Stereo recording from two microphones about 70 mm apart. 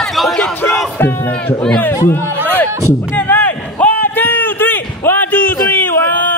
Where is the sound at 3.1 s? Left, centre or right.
Left.